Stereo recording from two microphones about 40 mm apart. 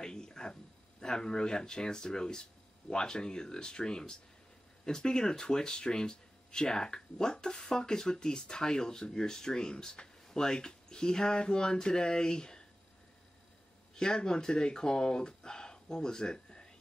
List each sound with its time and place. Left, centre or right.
0.0 s a sound: centre
1.0 s speech: centre
13.9 s speech: centre